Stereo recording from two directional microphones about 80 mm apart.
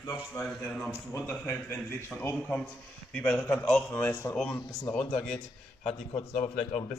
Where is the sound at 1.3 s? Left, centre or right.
Left.